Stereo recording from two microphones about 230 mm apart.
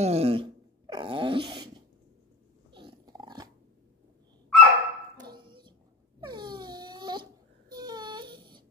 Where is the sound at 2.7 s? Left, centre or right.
Centre.